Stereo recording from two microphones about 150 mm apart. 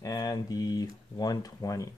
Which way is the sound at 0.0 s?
25° left (ahead or behind).